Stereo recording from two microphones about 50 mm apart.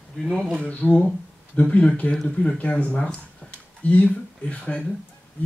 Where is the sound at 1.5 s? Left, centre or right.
Left.